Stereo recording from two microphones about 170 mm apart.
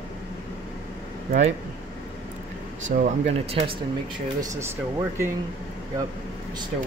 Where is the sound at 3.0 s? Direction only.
35° right (ahead or behind).